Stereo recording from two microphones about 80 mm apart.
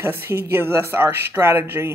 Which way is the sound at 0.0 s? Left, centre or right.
Right.